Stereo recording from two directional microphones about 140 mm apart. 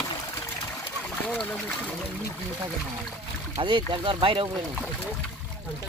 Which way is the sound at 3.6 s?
35° right (ahead or behind).